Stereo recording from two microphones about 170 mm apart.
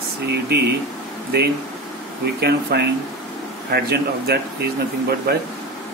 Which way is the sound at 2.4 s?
75° right (ahead or behind).